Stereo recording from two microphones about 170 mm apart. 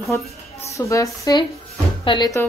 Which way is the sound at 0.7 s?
20° left (ahead or behind).